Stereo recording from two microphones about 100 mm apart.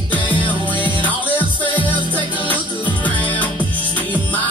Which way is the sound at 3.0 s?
15° left (ahead or behind).